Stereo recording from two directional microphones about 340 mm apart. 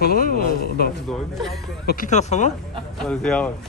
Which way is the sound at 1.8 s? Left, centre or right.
Left.